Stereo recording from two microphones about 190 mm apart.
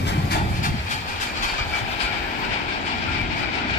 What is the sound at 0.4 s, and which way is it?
Train, 45° left (ahead or behind).